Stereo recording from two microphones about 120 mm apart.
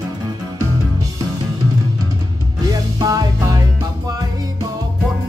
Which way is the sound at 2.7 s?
30° right (ahead or behind).